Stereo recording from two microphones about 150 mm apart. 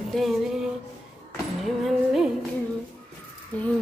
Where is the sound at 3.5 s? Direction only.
10° left (ahead or behind).